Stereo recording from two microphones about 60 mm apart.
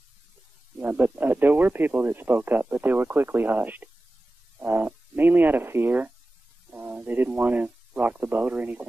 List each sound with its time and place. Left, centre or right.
0.7 s speech: right